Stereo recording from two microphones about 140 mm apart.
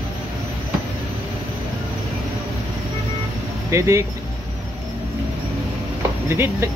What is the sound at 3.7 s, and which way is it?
Speech, 20° right (ahead or behind).